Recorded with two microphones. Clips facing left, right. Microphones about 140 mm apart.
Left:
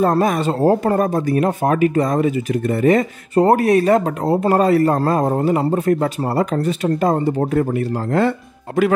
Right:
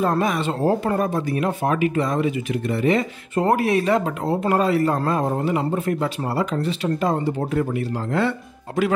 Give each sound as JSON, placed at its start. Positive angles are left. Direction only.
{"t": 0.0, "sound": "speech", "side_deg": 45}